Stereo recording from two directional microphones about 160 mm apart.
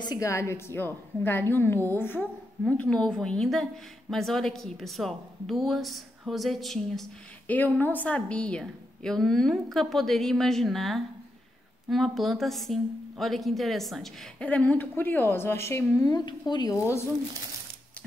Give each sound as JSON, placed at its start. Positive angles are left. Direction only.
{"t": 0.0, "sound": "a woman's voice", "side_deg": 20}